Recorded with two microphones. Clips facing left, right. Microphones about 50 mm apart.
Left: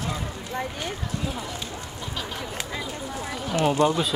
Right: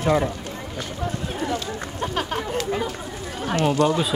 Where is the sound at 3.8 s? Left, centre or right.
Left.